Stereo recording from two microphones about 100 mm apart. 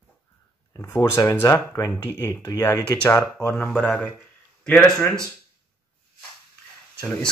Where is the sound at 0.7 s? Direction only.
25° left (ahead or behind).